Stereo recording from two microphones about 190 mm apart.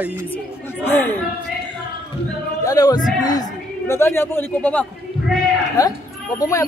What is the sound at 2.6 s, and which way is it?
A woman's voice, 20° left (ahead or behind).